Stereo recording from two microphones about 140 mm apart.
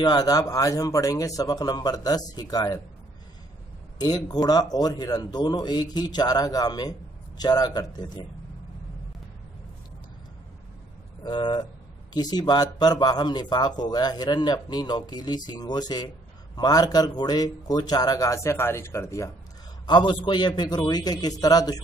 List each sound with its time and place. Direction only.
0.0 s speech: 30° left (ahead or behind)
4.0 s speech: 30° left (ahead or behind)
11.2 s speech: 35° left (ahead or behind)
19.9 s speech: 35° left (ahead or behind)